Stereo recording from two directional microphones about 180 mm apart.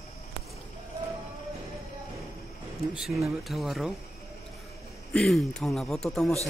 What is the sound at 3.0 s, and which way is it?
Speech, centre (ahead or behind).